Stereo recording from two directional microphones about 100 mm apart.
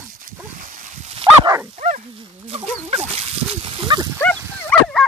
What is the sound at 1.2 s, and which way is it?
Dog, 70° right (ahead or behind).